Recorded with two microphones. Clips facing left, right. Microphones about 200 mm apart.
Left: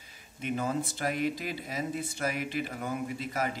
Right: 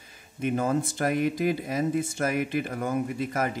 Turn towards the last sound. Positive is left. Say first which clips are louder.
# right 5 dB
turn(degrees=-50)  # may be behind; listen again after turning